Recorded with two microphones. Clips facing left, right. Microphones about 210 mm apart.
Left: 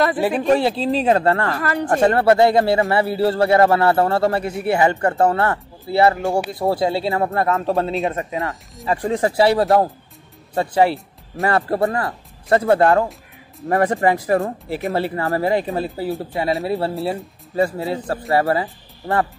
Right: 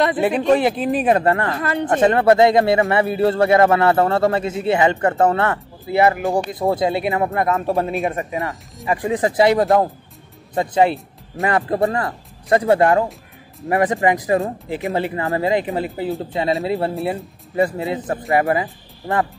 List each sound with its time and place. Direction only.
0.0 s speech: 20° right (ahead or behind)